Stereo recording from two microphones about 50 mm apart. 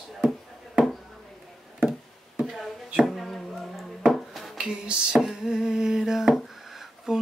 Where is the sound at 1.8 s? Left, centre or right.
Centre.